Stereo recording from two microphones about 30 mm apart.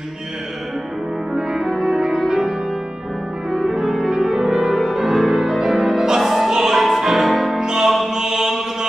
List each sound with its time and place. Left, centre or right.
1.3 s music: centre
3.5 s music: centre
7.6 s music: centre
8.1 s mantra: centre